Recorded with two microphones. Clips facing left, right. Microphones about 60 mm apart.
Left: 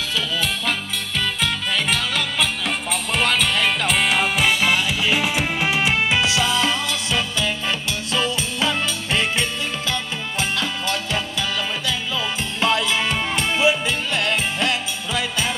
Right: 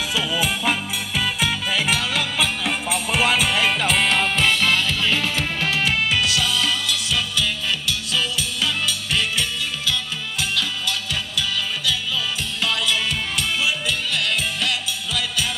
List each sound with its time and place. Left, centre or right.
0.1 s music: centre; by 15.5 s left